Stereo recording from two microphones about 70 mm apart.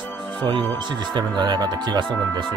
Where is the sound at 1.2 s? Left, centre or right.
Right.